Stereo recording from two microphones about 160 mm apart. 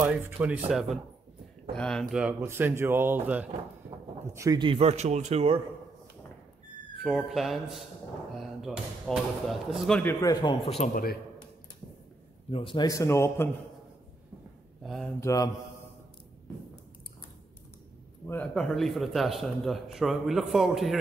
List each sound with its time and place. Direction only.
0.1 s speech: 10° right (ahead or behind)
2.4 s speech: 15° right (ahead or behind); by 5.6 s 40° right (ahead or behind)
7.0 s speech: centre (ahead or behind)
10.2 s a man's voice: 25° left (ahead or behind)
12.4 s a man's voice: 35° left (ahead or behind); by 13.5 s 15° left (ahead or behind)
14.8 s speech: centre (ahead or behind)
15.1 s a man's voice: 20° left (ahead or behind)
18.2 s speech: 10° left (ahead or behind)